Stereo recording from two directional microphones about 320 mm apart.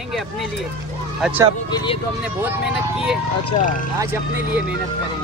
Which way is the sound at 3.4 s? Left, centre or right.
Left.